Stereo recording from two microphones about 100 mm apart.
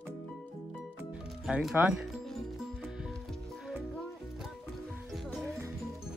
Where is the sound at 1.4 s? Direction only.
5° right (ahead or behind).